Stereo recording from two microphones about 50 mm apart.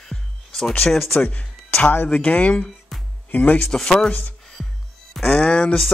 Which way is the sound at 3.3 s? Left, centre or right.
Left.